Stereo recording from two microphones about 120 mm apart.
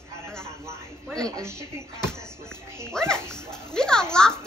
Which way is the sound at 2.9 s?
5° left (ahead or behind).